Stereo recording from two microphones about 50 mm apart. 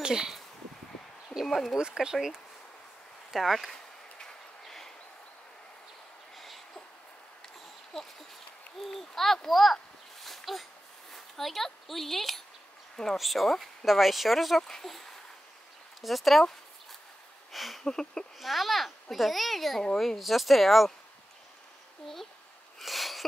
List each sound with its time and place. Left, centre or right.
0.0 s speech: centre
1.4 s speech: centre
1.8 s speech: centre
3.3 s speech: centre
4.2 s a sound: centre
6.3 s a sound: centre
8.7 s speech: centre
10.2 s a sound: centre
12.9 s speech: centre
14.6 s speech: centre
17.5 s a sound: centre
18.4 s speech: centre
22.0 s speech: centre
22.8 s sneeze: centre